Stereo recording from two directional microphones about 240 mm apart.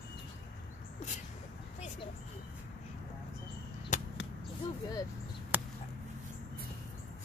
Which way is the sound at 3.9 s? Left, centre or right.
Left.